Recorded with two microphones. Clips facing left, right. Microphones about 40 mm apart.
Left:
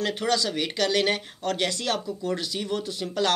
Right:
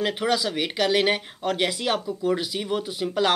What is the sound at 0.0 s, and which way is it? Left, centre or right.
Speech, centre.